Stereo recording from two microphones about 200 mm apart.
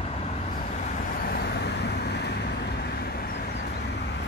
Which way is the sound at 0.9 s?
50° left (ahead or behind).